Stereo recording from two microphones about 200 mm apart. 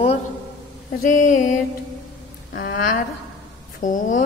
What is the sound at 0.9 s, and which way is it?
Speech, 40° left (ahead or behind).